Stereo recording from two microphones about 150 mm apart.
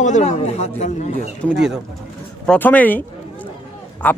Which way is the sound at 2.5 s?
10° left (ahead or behind).